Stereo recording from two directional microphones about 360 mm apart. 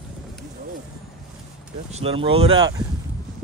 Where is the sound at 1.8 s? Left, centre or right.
Centre.